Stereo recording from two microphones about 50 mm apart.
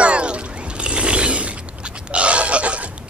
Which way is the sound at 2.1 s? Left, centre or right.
Right.